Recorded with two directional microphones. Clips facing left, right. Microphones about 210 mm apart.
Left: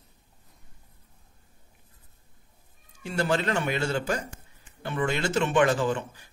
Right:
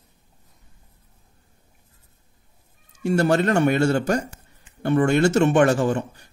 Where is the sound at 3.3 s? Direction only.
45° right (ahead or behind).